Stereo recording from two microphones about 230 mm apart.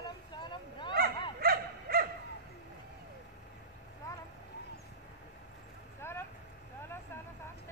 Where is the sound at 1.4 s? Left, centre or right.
Right.